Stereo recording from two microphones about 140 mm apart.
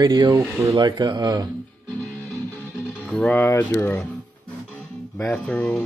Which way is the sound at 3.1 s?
10° left (ahead or behind).